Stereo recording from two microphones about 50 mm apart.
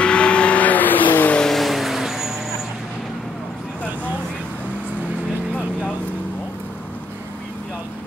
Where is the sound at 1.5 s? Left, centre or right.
Centre.